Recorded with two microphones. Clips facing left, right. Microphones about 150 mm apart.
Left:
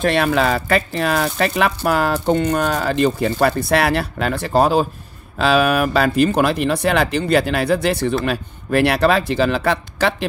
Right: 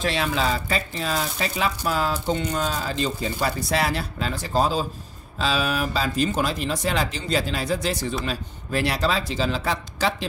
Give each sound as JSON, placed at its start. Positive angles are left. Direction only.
{"t": 0.0, "sound": "speech", "side_deg": 60}